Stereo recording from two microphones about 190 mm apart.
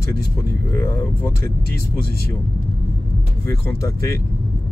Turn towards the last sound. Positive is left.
turn(degrees=15)  # may be behind; listen again after turning